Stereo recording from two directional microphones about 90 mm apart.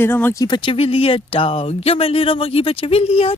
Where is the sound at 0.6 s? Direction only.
80° left.